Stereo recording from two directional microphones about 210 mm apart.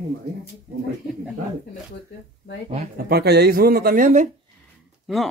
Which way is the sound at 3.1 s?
50° right (ahead or behind).